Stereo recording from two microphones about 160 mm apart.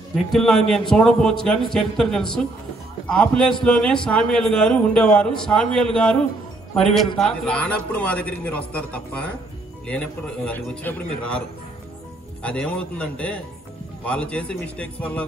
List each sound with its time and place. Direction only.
0.3 s a man's voice: centre (ahead or behind)
12.4 s a man's voice: 5° left (ahead or behind)